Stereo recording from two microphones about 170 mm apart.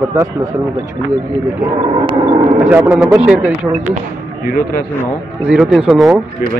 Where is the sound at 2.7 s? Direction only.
10° right (ahead or behind).